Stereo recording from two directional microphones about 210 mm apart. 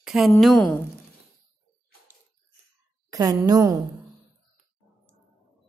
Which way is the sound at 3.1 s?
15° right (ahead or behind).